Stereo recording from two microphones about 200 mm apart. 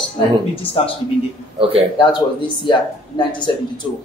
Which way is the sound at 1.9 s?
25° left (ahead or behind).